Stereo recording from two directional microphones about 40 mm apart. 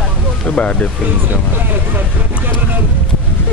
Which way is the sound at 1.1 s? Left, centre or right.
Right.